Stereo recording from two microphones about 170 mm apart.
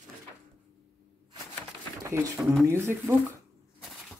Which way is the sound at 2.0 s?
15° right (ahead or behind).